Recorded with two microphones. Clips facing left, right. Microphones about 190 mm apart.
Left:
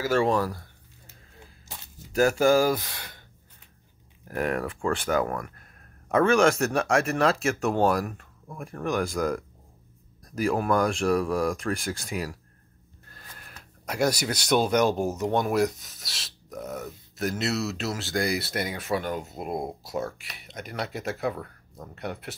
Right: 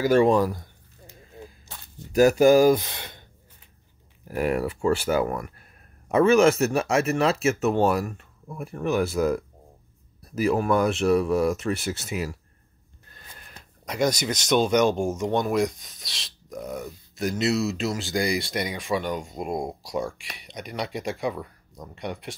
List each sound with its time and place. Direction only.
0.0 s a sound: 20° right (ahead or behind)
2.1 s speech: 15° right (ahead or behind)
4.3 s speech: 10° right (ahead or behind)
21.3 s speech: 10° right (ahead or behind)
21.9 s speech: 5° left (ahead or behind)